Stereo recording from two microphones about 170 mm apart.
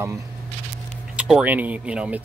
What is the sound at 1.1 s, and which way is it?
Speech, 5° right (ahead or behind).